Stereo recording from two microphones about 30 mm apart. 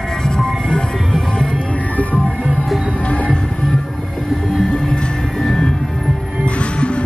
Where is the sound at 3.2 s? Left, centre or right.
Left.